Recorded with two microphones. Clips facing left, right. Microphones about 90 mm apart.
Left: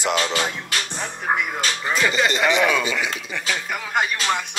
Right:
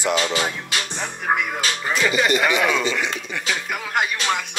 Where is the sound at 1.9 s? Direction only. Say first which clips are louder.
Even; 15° right (ahead or behind).